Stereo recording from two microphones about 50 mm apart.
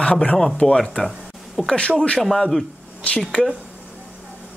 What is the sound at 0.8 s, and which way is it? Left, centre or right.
A man's voice, centre.